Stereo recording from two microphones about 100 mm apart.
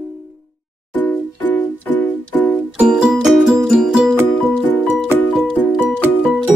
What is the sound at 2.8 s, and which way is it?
Music, 5° right (ahead or behind).